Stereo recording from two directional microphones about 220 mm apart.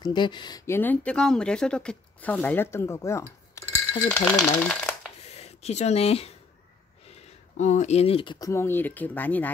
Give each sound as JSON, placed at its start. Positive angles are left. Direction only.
{"t": 0.0, "sound": "speech", "side_deg": 20}
{"t": 5.2, "sound": "speech", "side_deg": 30}
{"t": 7.5, "sound": "speech", "side_deg": 30}